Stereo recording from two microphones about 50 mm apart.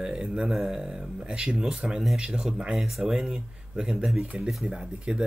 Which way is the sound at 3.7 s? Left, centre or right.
Centre.